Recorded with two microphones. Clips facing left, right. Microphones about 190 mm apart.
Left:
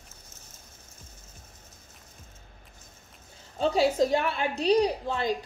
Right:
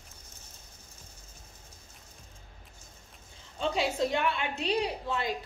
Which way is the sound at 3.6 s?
35° left (ahead or behind).